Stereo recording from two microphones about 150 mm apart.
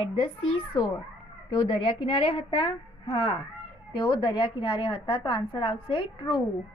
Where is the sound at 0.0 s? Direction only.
35° left (ahead or behind).